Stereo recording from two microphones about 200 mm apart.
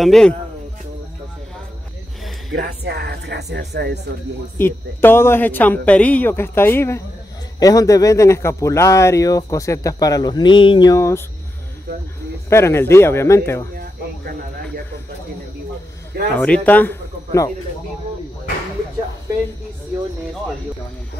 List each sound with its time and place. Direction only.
0.0 s speech: 5° left (ahead or behind)
2.6 s a woman's voice: 55° right (ahead or behind)
4.6 s speech: 10° left (ahead or behind)
12.4 s speech: 15° left (ahead or behind)
16.3 s speech: 5° left (ahead or behind)